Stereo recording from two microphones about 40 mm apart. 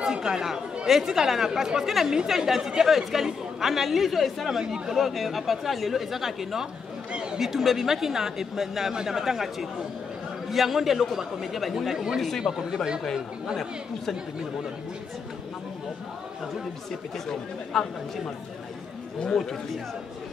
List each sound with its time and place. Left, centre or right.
0.0 s a woman's voice: centre
7.1 s a sound: right
7.3 s a woman's voice: centre
17.3 s speech: centre